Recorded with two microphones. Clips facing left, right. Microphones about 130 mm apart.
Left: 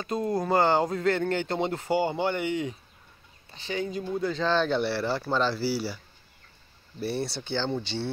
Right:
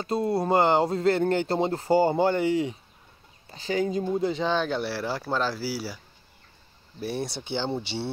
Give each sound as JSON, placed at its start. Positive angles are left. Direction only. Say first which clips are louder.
{"t": 0.0, "sound": "speech", "louder": "right 2 dB", "side_deg": -30}
{"t": 4.1, "sound": "speech", "louder": "right 1 dB", "side_deg": -20}
{"t": 7.1, "sound": "speech", "louder": "even", "side_deg": -15}